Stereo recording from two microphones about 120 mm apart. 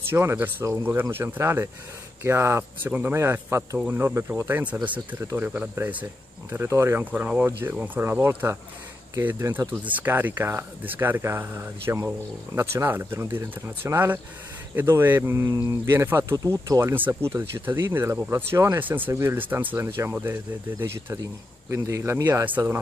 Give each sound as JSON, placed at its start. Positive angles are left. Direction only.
{"t": 0.1, "sound": "speech", "side_deg": -20}
{"t": 16.9, "sound": "speech", "side_deg": -15}
{"t": 21.6, "sound": "speech", "side_deg": -25}